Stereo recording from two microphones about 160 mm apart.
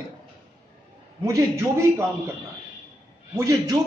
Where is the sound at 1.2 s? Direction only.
20° right (ahead or behind).